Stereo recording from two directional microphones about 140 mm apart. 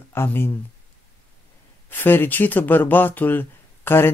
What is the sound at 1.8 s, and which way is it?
Speech, 15° left (ahead or behind).